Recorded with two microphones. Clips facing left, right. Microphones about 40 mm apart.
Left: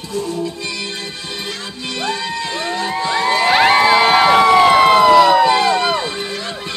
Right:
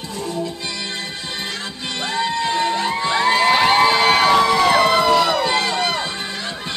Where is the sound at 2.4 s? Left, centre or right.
Centre.